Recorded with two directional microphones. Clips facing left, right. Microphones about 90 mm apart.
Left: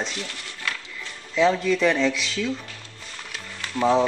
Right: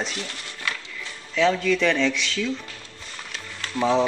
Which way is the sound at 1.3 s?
5° left (ahead or behind).